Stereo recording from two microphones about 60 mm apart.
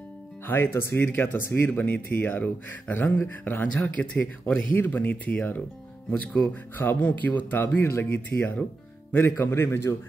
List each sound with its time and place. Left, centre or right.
0.5 s a man's voice: left